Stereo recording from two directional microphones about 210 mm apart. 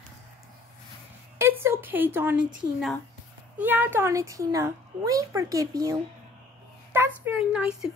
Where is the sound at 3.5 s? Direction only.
5° right (ahead or behind).